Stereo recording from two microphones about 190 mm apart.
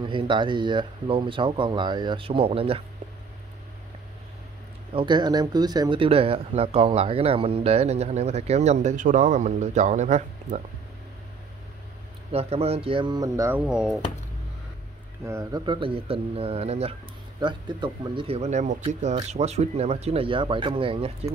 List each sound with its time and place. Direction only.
0.0 s speech: 25° right (ahead or behind)
4.9 s speech: 25° right (ahead or behind)
12.3 s speech: 30° right (ahead or behind)
13.7 s speech: 5° right (ahead or behind)
15.2 s speech: 20° right (ahead or behind)